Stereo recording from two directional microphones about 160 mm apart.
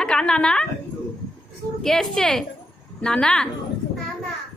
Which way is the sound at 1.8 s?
Centre (ahead or behind).